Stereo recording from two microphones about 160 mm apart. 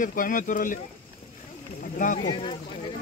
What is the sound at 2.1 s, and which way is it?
Speech, 35° left (ahead or behind).